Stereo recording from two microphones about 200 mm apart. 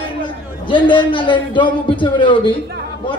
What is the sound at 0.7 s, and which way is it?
A man's voice, 25° left (ahead or behind).